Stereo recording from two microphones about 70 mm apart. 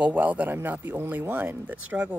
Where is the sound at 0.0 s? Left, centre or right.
Right.